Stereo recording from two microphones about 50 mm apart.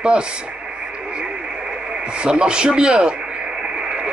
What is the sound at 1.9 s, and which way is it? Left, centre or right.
Speech, centre.